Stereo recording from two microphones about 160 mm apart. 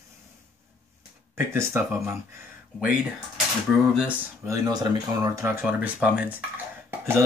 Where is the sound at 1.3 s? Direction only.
15° right (ahead or behind).